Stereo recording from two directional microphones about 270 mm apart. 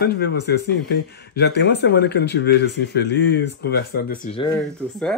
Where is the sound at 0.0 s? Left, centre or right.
Left.